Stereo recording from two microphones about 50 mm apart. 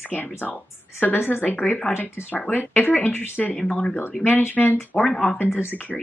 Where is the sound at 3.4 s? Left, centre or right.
Centre.